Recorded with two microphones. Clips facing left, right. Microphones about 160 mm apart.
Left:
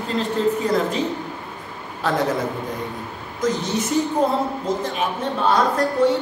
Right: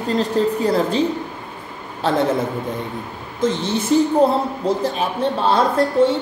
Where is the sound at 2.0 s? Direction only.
30° right (ahead or behind).